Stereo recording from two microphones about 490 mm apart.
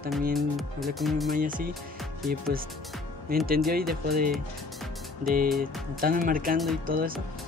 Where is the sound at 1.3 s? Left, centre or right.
Centre.